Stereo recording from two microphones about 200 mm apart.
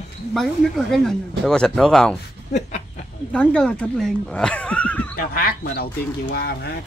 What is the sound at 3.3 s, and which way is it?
Speech, 5° left (ahead or behind).